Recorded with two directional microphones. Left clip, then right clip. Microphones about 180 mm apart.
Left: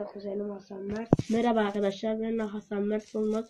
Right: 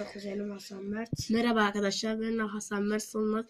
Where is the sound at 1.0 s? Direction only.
40° right (ahead or behind).